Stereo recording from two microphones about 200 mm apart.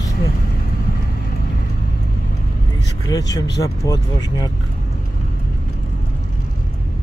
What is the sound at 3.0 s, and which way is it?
Speech, 20° left (ahead or behind).